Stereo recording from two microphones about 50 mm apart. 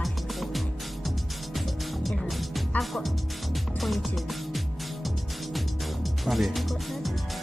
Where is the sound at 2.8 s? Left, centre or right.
Centre.